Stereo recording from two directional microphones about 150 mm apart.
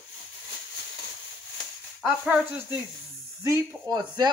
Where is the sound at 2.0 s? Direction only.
10° right (ahead or behind).